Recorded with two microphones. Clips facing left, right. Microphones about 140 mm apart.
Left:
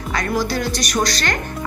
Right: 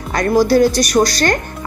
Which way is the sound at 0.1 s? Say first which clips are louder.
Right 9 dB; 40° right (ahead or behind).